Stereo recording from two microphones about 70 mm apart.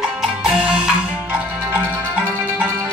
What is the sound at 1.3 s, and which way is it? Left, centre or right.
Music, right.